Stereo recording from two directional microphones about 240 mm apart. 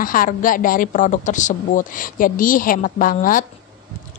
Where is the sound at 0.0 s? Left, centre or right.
Left.